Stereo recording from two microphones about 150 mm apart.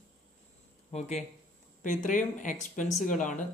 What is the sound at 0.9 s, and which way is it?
Speech, 45° left (ahead or behind).